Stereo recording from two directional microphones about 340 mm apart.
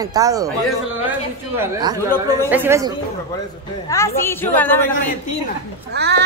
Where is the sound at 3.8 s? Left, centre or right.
Centre.